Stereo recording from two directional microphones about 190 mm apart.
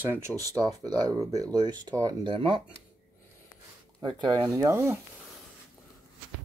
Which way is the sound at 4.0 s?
25° right (ahead or behind).